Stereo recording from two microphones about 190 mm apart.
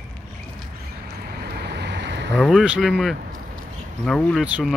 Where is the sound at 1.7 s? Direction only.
65° right (ahead or behind).